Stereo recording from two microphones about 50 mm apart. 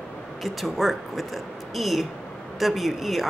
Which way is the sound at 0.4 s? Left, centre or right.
Centre.